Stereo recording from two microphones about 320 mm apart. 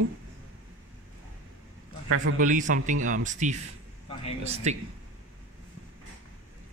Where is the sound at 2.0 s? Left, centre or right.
Right.